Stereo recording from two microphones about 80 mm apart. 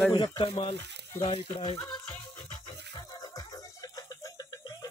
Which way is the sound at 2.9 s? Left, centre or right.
Left.